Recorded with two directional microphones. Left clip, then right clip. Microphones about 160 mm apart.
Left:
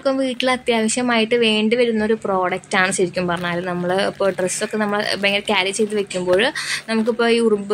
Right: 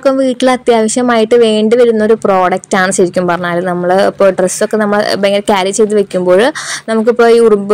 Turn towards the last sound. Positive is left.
turn(degrees=-30)  # may be behind; listen again after turning